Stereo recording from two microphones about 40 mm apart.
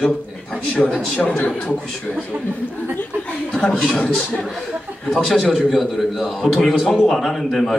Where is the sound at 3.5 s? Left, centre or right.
Left.